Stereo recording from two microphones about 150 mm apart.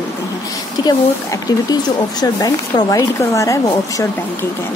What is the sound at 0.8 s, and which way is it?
Speech, 30° left (ahead or behind).